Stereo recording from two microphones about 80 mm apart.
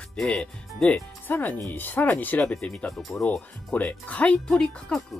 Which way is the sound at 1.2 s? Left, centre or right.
Left.